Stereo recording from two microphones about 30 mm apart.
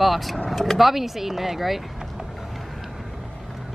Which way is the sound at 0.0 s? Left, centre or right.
Centre.